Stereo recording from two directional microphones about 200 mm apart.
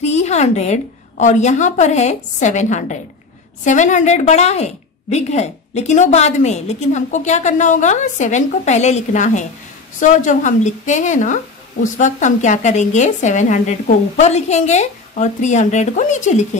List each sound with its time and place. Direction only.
0.0 s a woman's voice: 35° left (ahead or behind)